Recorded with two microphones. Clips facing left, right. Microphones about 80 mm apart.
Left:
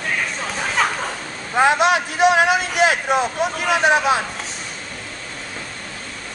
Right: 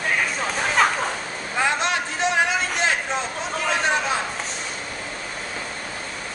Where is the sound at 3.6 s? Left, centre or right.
Centre.